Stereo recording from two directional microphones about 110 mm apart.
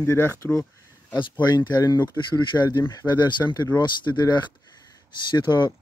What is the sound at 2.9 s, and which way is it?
Speech, 40° left (ahead or behind).